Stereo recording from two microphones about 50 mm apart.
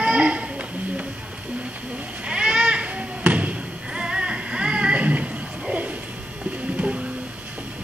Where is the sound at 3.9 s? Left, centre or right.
Centre.